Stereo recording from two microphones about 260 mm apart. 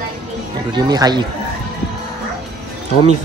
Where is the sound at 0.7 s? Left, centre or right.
Centre.